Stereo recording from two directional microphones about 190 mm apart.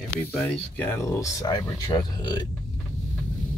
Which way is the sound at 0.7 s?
10° left (ahead or behind).